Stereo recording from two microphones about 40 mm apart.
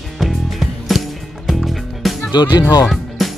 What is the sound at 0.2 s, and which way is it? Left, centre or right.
Music, centre.